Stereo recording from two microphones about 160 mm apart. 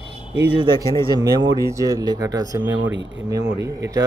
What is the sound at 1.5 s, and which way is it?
A man's voice, 20° right (ahead or behind).